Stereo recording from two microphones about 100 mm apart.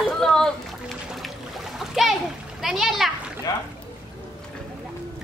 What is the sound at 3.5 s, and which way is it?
Rowboat, 40° left (ahead or behind).